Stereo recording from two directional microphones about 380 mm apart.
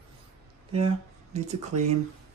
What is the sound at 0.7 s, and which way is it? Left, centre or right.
Speech, centre.